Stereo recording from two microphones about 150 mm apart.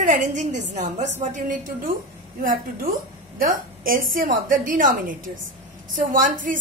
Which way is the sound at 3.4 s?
65° right (ahead or behind).